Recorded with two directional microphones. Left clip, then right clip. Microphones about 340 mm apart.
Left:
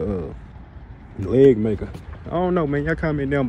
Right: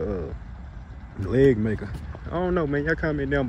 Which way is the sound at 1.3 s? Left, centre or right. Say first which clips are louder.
Left 5 dB; left.